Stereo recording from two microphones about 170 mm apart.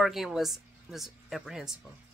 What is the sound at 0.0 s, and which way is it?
A woman's voice, centre (ahead or behind).